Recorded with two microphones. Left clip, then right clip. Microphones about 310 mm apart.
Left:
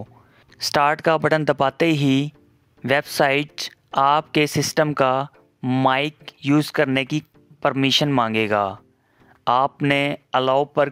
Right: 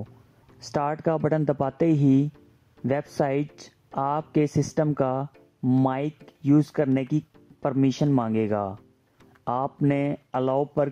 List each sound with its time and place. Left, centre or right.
0.6 s speech: left